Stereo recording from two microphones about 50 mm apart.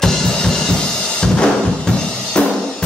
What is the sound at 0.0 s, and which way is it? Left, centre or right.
Drum kit, centre.